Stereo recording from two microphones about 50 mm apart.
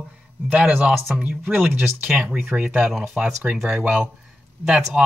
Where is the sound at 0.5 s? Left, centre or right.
Right.